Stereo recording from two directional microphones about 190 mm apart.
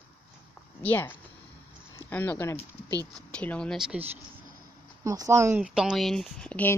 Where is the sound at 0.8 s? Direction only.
10° left (ahead or behind).